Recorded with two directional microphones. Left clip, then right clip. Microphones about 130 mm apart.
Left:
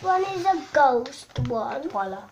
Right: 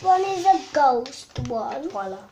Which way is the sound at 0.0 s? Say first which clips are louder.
Right 4 dB; 15° right (ahead or behind).